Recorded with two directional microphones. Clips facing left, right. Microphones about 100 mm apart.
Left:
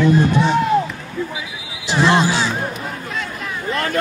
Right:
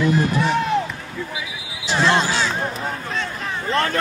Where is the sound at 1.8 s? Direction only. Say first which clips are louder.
Left 3 dB; 15° left (ahead or behind).